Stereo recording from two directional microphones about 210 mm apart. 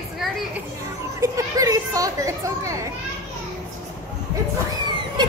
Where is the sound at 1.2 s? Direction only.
15° right (ahead or behind).